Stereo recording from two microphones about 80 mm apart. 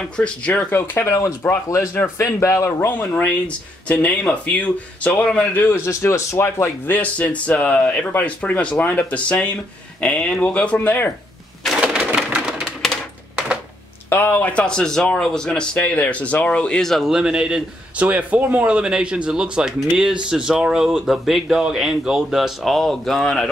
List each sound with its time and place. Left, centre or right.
0.2 s speech: centre
0.7 s speech: left
5.9 s speech: left
6.9 s speech: centre
11.8 s crushing: centre
14.0 s speech: left; by 23.5 s centre